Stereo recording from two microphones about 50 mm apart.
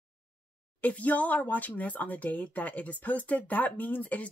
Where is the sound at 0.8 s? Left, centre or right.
Left.